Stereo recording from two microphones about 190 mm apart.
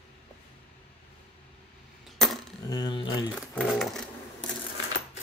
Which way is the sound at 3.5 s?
5° left (ahead or behind).